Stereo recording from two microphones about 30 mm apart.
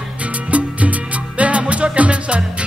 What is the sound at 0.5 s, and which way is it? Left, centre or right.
Music, right.